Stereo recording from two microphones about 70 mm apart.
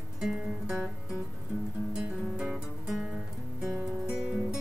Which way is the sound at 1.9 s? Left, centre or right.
Centre.